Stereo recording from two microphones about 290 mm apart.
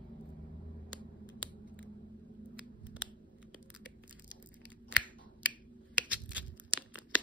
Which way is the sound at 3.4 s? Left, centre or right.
Centre.